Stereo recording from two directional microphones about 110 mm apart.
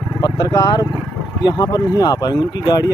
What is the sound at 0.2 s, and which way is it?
Speech, 40° left (ahead or behind).